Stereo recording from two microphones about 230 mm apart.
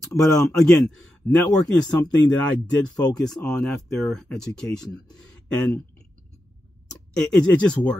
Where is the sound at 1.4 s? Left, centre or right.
Centre.